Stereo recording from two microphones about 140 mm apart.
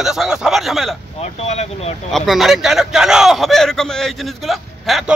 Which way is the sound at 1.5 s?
50° left (ahead or behind).